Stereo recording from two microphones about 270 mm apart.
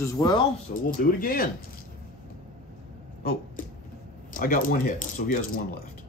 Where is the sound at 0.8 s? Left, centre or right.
Left.